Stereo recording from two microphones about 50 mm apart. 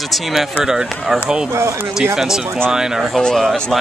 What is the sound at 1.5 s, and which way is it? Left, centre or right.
Speech, right.